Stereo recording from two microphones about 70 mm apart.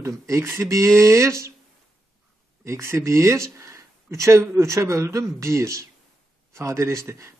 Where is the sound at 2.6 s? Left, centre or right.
Right.